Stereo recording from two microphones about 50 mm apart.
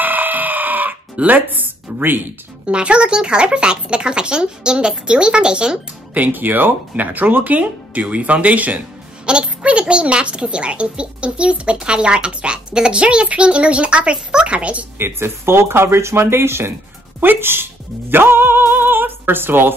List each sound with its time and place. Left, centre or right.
0.0 s chicken: right
2.6 s a woman's voice: right
6.1 s speech: right
9.2 s a woman's voice: right
15.0 s speech: right